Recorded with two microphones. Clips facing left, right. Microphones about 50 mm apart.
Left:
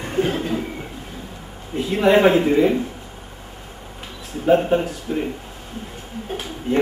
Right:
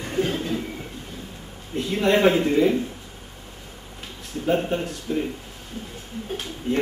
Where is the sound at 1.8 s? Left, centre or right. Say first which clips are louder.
Left 4 dB; centre.